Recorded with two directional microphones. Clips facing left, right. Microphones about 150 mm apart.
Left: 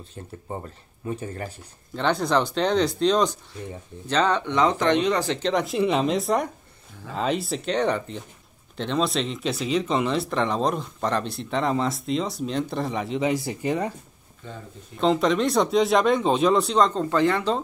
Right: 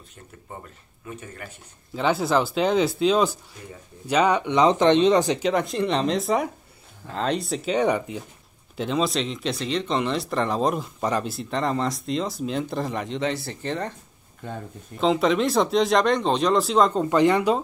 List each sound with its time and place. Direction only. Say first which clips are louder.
0.5 s speech: left 6 dB; 30° left (ahead or behind)
2.0 s speech: right 1 dB; 5° right (ahead or behind)
5.5 s speech: left 1 dB; centre (ahead or behind)
15.0 s speech: even; centre (ahead or behind)